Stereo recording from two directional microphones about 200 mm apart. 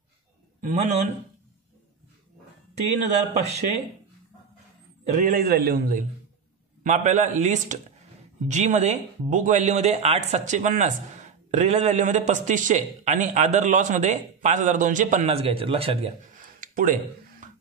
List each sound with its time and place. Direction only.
0.6 s a man's voice: 40° right (ahead or behind)
3.3 s speech: 35° right (ahead or behind)
5.1 s a man's voice: 45° right (ahead or behind); by 16.1 s 30° right (ahead or behind)
16.3 s a sound: 40° right (ahead or behind)